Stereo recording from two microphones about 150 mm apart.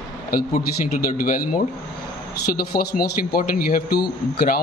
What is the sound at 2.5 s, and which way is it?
Speech, 90° left.